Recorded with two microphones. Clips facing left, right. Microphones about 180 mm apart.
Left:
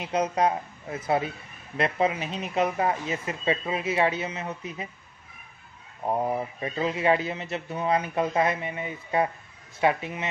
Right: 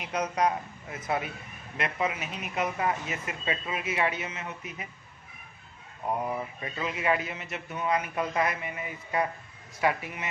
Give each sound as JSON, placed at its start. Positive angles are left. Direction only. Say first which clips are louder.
{"t": 0.0, "sound": "speech", "louder": "left 3 dB", "side_deg": 25}
{"t": 6.0, "sound": "speech", "louder": "left 4 dB", "side_deg": 30}